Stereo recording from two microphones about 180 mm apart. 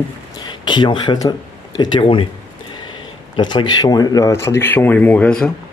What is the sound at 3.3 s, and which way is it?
Speech, 25° left (ahead or behind).